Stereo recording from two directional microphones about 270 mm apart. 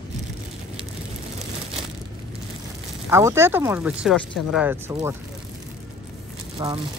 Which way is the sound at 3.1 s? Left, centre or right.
Centre.